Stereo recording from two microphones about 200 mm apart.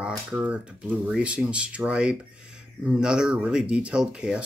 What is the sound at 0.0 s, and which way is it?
Speech, 5° right (ahead or behind).